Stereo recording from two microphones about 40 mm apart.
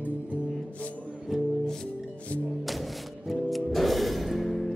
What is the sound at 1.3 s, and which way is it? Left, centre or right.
Music, centre.